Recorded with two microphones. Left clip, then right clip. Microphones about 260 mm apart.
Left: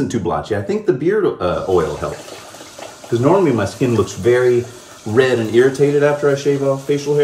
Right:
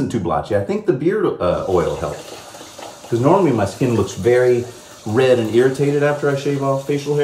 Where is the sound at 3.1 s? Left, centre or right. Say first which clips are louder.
Left 1 dB; centre.